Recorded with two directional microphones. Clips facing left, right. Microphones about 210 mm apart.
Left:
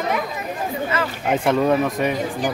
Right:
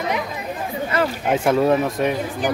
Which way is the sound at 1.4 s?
5° right (ahead or behind).